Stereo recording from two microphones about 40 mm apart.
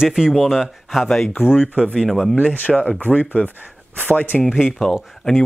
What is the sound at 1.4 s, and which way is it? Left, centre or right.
Speech, left.